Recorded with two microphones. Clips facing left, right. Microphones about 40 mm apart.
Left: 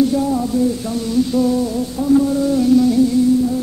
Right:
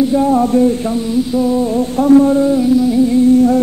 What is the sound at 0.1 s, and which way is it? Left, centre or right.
Music, right.